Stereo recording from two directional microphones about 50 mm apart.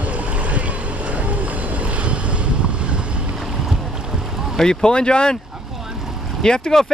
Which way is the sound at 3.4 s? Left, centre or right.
Centre.